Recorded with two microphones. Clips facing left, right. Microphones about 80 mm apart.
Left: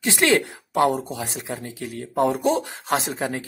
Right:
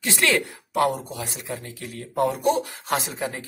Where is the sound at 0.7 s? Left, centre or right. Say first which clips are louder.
Left 2 dB; left.